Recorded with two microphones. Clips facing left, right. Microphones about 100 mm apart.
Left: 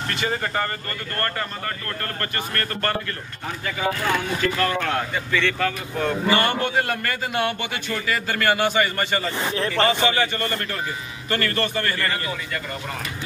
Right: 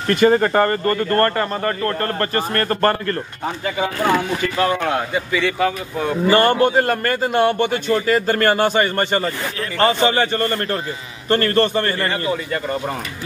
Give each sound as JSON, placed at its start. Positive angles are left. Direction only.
{"t": 0.1, "sound": "a man's voice", "side_deg": -50}
{"t": 4.6, "sound": "speech", "side_deg": -15}
{"t": 6.3, "sound": "a man's voice", "side_deg": -40}
{"t": 9.8, "sound": "a man's voice", "side_deg": -30}